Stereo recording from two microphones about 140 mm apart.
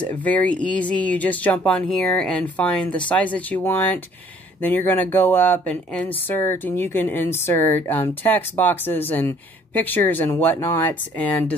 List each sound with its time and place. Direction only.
0.1 s speech: 10° left (ahead or behind)